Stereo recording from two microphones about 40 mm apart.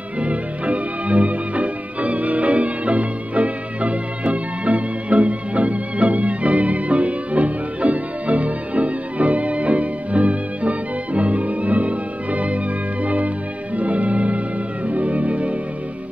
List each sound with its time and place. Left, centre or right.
0.2 s music: right